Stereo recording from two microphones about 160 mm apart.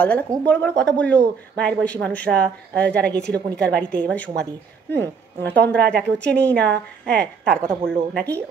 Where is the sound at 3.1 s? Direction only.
5° left (ahead or behind).